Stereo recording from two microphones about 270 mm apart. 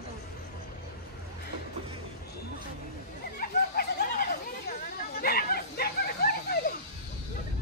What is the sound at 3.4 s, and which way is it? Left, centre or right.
Chatter, left.